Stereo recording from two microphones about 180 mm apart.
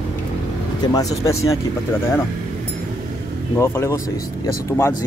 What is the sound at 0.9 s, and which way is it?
Speech, 20° left (ahead or behind).